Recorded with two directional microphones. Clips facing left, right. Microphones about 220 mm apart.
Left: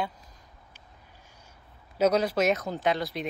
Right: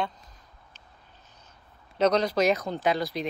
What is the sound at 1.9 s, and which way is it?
Speech, 5° left (ahead or behind).